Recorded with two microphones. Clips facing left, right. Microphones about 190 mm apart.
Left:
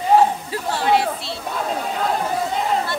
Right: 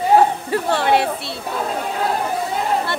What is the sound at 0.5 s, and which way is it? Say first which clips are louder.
Chatter: right 2 dB; 60° right (ahead or behind).